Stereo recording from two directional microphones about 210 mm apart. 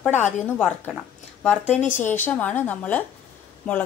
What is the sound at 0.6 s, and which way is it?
A woman's voice, 5° left (ahead or behind).